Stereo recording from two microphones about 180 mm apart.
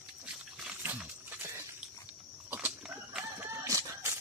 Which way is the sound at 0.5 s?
5° right (ahead or behind).